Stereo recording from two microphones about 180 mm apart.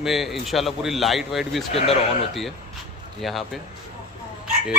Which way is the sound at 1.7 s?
35° left (ahead or behind).